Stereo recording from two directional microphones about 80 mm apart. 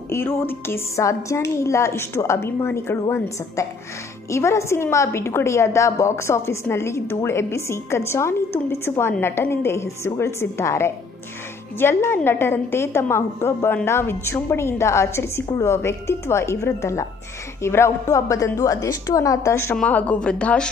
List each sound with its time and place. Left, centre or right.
0.1 s a woman's voice: left
19.7 s a woman's voice: centre